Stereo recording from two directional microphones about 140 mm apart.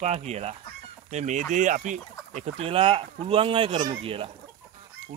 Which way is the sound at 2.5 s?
40° right (ahead or behind).